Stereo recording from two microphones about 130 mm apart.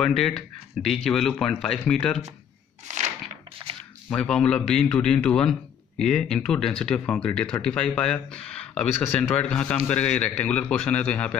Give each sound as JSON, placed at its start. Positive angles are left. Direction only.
{"t": 0.0, "sound": "a man's voice", "side_deg": 0}
{"t": 2.9, "sound": "a sound", "side_deg": -70}
{"t": 4.1, "sound": "a man's voice", "side_deg": 5}